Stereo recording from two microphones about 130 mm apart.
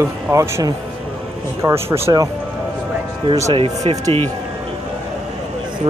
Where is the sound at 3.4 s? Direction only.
55° right (ahead or behind).